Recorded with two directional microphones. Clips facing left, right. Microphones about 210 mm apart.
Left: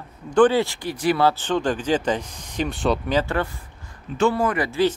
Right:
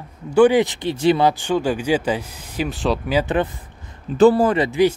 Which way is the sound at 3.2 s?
20° right (ahead or behind).